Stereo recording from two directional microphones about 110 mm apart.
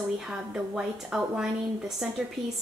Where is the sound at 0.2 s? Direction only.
5° right (ahead or behind).